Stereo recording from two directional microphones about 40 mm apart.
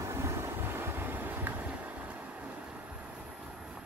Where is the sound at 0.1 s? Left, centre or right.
Right.